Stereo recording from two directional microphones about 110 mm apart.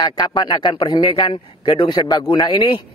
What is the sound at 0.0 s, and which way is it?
Speech, 40° left (ahead or behind).